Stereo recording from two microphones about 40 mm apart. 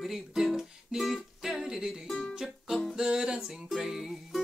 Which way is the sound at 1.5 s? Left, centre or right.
Centre.